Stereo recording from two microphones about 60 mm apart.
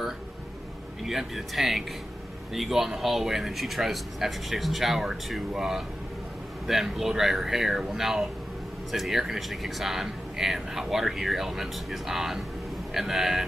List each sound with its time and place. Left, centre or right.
1.0 s speech: centre